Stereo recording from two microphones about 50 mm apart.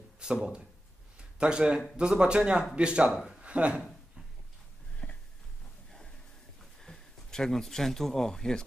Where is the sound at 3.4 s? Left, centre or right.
Right.